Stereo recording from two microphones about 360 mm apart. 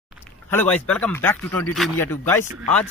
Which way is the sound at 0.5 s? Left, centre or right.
Centre.